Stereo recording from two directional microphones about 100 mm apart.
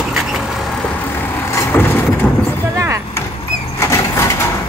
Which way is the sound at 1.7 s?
20° left (ahead or behind).